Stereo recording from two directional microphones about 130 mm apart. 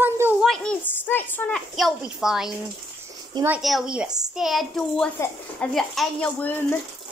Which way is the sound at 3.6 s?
5° right (ahead or behind).